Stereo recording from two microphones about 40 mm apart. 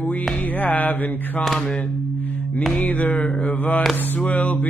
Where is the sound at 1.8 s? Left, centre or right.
Left.